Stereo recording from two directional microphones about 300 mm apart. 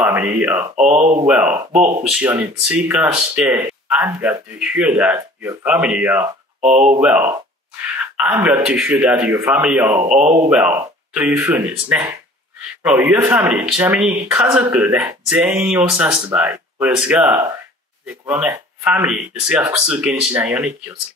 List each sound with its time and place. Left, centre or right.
0.0 s speech: centre
0.7 s speech: right
1.2 s speech: centre
10.0 s speech: right
10.5 s speech: centre